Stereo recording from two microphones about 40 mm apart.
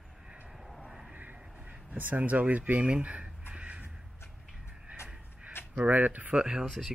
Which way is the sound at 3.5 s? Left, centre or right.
Right.